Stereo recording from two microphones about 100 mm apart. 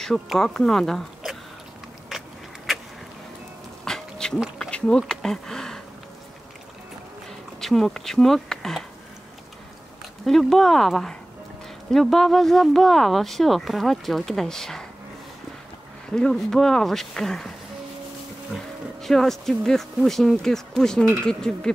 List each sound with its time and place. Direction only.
0.0 s speech: 5° left (ahead or behind)
2.0 s a sound: centre (ahead or behind)
3.8 s dog: 5° left (ahead or behind)
4.6 s speech: 10° left (ahead or behind)
7.6 s speech: centre (ahead or behind)
10.2 s speech: 5° left (ahead or behind)
16.1 s speech: 5° left (ahead or behind)
18.5 s speech: 5° left (ahead or behind)